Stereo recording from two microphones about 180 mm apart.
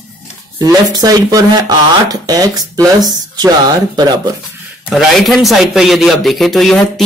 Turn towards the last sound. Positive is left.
turn(degrees=0)  # may be behind; listen again after turning